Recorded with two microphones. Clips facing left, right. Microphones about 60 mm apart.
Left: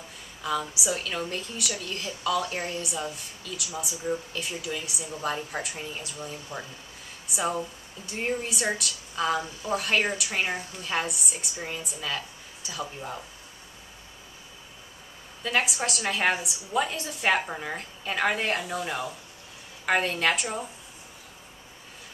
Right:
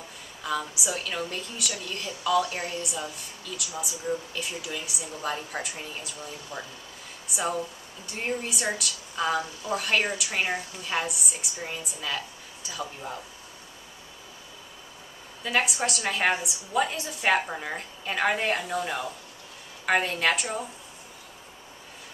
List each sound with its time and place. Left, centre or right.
0.4 s a woman's voice: centre
6.5 s speech: centre
7.3 s a woman's voice: centre
15.4 s a woman's voice: centre